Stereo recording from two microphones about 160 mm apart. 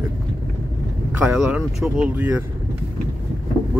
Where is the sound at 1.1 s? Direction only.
10° right (ahead or behind).